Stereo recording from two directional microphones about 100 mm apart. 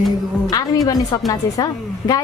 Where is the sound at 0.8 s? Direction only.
35° left (ahead or behind).